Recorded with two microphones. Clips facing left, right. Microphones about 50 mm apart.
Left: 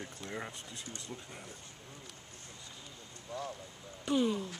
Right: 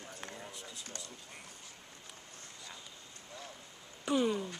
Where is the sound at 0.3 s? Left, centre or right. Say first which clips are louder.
Left 5 dB; left.